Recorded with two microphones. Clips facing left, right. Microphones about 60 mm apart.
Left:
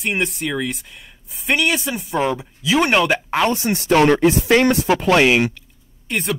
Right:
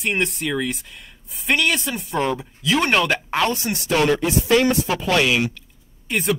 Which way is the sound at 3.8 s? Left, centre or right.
Left.